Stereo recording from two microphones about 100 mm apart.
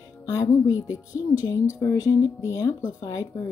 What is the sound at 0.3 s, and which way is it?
Speech, 35° left (ahead or behind).